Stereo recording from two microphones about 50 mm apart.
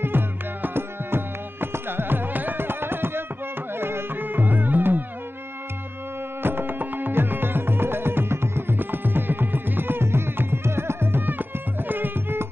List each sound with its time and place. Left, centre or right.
0.0 s music: right
6.4 s music: right